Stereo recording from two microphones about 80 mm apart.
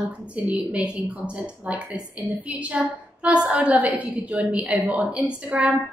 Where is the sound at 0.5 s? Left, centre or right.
Centre.